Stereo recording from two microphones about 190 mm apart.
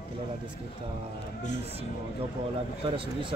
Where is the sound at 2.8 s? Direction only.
25° right (ahead or behind).